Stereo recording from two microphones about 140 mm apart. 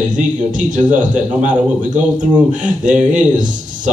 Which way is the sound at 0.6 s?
65° right (ahead or behind).